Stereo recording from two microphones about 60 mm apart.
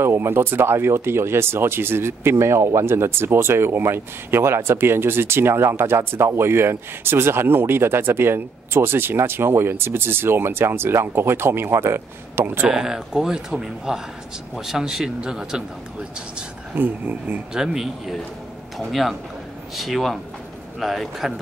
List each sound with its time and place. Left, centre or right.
0.0 s speech: right
12.6 s speech: centre
16.7 s speech: right
17.6 s speech: centre